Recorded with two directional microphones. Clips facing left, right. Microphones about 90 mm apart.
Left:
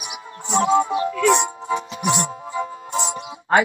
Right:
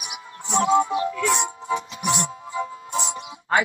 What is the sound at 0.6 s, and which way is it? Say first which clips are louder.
Music: left 1 dB; 30° left (ahead or behind).